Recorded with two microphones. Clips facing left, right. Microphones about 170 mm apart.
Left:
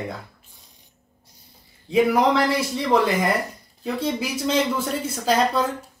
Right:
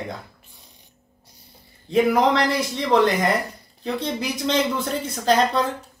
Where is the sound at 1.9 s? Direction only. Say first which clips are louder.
Even; 5° left (ahead or behind).